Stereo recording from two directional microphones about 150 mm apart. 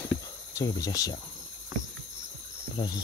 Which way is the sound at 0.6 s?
25° left (ahead or behind).